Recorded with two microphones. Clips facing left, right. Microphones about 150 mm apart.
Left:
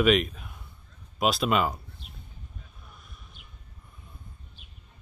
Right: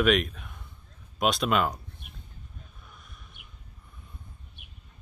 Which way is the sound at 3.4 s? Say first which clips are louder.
Left 1 dB; 65° right (ahead or behind).